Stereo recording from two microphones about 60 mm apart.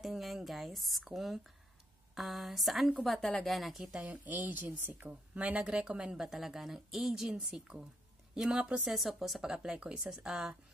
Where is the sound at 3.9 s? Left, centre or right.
Right.